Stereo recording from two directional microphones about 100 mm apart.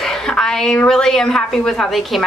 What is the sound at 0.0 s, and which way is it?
Speech, 5° left (ahead or behind).